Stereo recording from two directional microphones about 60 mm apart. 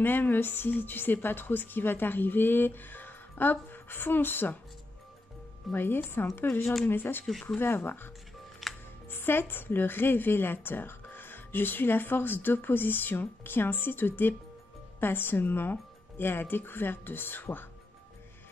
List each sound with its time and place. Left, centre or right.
0.0 s speech: left
5.7 s speech: left
8.6 s music: centre
9.1 s speech: left